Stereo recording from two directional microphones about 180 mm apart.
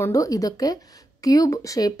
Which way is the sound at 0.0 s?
20° left (ahead or behind).